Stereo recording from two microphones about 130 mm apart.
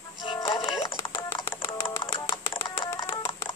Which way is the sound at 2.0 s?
35° left (ahead or behind).